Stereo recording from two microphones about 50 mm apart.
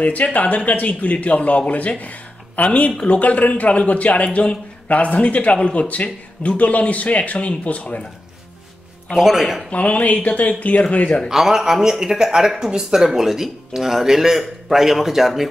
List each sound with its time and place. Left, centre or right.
0.0 s a man's voice: left
9.1 s a man's voice: centre
9.7 s a man's voice: left
11.2 s speech: centre